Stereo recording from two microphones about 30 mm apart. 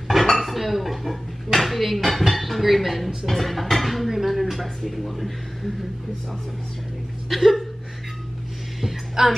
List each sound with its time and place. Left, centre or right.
0.2 s speech: centre
7.2 s speech: centre
9.2 s speech: centre